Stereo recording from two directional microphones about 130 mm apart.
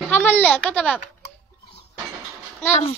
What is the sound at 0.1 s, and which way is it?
Speech, 15° left (ahead or behind).